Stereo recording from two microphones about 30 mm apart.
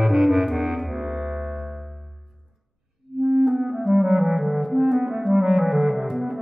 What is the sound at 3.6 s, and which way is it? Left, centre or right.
Clarinet, centre.